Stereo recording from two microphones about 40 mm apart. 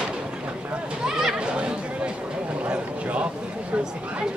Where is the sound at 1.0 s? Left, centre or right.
Centre.